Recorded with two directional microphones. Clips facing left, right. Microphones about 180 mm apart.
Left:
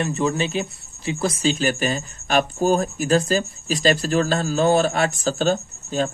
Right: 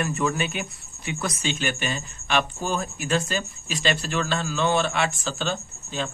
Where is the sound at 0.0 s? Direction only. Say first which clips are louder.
Left 3 dB; 30° left (ahead or behind).